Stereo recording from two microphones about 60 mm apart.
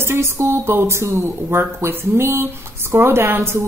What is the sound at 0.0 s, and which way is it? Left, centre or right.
Speech, right.